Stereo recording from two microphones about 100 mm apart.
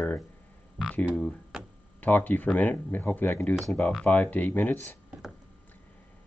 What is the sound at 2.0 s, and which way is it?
Speech, 20° left (ahead or behind).